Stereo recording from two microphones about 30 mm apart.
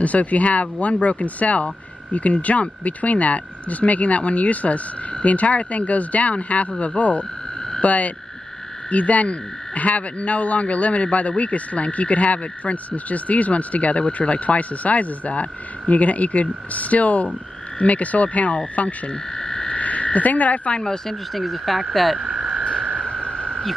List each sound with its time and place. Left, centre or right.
0.0 s a man's voice: left
7.8 s frog: left
8.9 s a man's voice: left
19.3 s frog: centre
19.7 s frog: left
21.1 s frog: centre
22.2 s frog: right
22.7 s a sound: left